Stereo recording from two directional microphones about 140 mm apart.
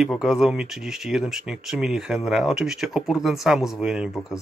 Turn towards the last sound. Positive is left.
turn(degrees=0)  # may be behind; listen again after turning